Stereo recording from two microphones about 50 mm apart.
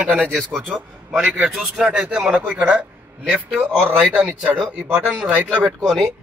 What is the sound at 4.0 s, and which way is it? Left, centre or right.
Speech, right.